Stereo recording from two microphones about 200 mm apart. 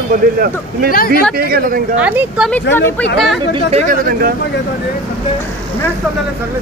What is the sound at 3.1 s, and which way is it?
Speech, centre (ahead or behind).